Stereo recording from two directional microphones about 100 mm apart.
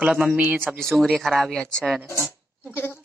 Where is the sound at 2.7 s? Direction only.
25° left (ahead or behind).